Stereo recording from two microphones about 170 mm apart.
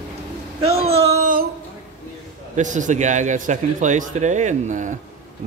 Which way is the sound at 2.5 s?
45° right (ahead or behind).